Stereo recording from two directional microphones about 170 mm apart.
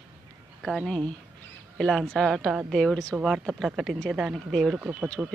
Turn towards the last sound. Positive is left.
turn(degrees=-10)  # may be behind; listen again after turning